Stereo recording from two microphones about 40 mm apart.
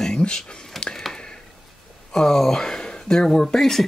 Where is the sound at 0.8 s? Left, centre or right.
Centre.